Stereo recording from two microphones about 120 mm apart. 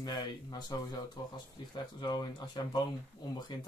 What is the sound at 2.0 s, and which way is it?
Speech, 35° left (ahead or behind).